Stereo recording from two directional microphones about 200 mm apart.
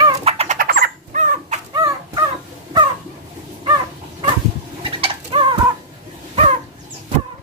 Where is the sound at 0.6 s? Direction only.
50° right (ahead or behind).